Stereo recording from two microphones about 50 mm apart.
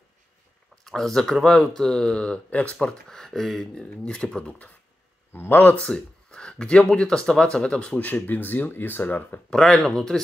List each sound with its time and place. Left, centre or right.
0.8 s speech: centre; by 3.0 s left
3.1 s speech: centre
3.7 s speech: left
5.3 s speech: left
5.8 s speech: centre
8.0 s speech: left
9.5 s speech: centre